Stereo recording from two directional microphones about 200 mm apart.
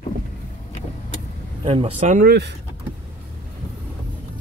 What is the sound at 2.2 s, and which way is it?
Speech, 55° right (ahead or behind).